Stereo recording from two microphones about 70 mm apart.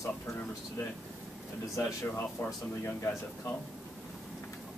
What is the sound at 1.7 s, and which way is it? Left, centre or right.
Speech, left.